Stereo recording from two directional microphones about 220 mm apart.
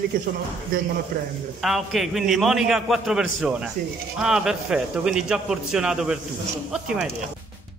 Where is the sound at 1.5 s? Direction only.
Centre (ahead or behind).